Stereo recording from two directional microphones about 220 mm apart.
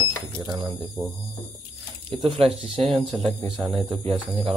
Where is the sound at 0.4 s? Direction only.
15° right (ahead or behind).